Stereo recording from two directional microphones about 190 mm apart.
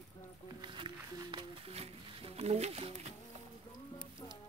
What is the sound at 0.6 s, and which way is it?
Music, 25° right (ahead or behind).